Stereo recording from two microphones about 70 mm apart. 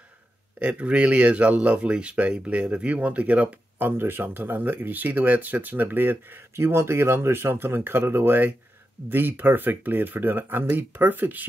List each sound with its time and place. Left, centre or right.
0.6 s speech: centre